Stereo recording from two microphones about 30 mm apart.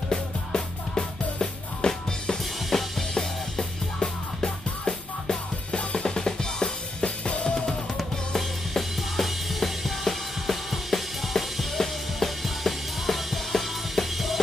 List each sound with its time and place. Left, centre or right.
0.1 s music: left
2.7 s drum kit: centre
3.2 s music: left
5.7 s drum kit: left
7.2 s drum kit: left
8.4 s music: centre